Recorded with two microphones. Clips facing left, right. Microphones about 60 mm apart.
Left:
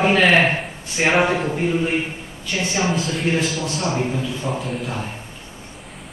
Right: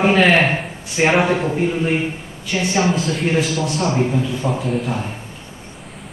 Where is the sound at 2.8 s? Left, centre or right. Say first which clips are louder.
Right 2 dB; centre.